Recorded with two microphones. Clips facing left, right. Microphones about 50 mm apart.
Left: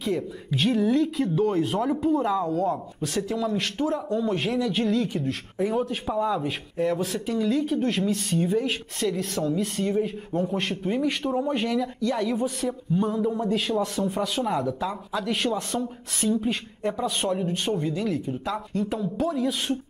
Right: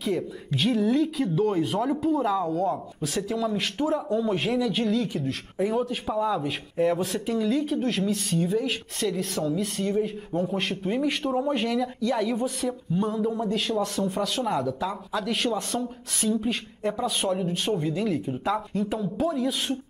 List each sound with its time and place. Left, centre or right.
0.0 s speech: centre